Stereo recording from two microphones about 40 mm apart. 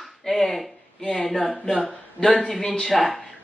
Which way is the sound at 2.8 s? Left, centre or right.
Centre.